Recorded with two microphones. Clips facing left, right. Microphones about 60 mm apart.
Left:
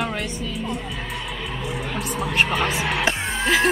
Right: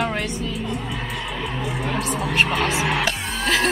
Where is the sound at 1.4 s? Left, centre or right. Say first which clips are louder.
Right 3 dB; centre.